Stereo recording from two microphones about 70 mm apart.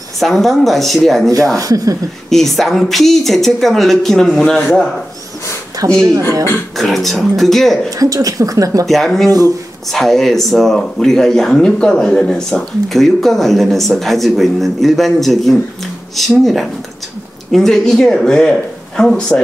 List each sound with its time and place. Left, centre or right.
0.2 s speech: centre
1.6 s speech: right
2.2 s speech: centre
5.9 s speech: right
6.8 s speech: centre
7.9 s speech: right
8.8 s speech: centre